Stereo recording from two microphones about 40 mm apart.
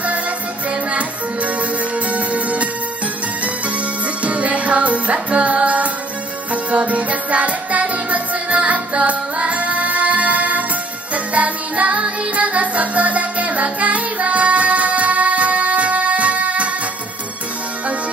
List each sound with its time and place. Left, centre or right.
0.7 s music: right
4.2 s music: right